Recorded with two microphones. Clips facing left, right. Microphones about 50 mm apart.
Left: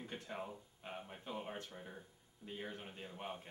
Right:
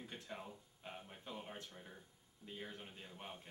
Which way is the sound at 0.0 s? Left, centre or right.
Centre.